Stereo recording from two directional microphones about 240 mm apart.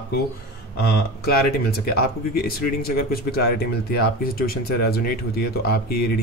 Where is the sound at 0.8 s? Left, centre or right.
Left.